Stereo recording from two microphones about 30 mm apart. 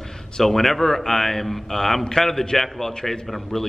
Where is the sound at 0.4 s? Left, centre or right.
Centre.